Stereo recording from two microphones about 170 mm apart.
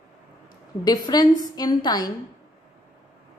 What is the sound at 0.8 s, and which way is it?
Speech, 25° left (ahead or behind).